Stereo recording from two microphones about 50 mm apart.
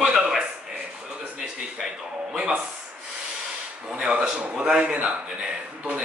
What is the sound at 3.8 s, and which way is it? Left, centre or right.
A man's voice, centre.